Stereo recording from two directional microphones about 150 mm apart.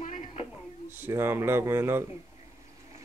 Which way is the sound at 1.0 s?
15° right (ahead or behind).